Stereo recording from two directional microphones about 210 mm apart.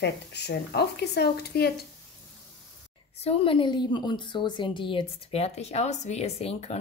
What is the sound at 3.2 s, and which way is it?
A woman's voice, 25° left (ahead or behind).